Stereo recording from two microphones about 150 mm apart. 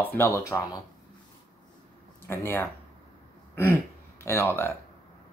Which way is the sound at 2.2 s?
15° left (ahead or behind).